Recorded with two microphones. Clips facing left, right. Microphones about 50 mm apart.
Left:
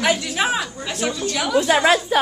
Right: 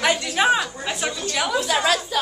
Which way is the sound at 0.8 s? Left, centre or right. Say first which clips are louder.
Left 2 dB; centre.